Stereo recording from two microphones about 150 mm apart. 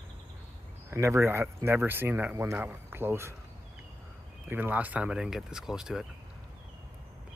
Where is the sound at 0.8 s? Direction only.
20° right (ahead or behind).